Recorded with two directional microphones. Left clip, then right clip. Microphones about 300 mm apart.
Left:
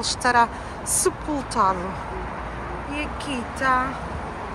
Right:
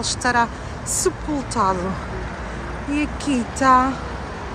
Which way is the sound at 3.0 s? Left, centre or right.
Centre.